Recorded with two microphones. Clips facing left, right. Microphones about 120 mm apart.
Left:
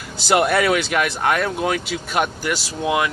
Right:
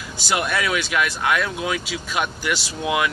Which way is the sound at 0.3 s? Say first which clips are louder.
Left 6 dB; 60° left (ahead or behind).